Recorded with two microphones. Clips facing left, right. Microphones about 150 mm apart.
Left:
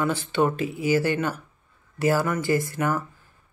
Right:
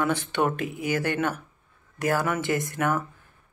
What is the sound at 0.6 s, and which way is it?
Speech, 60° right (ahead or behind).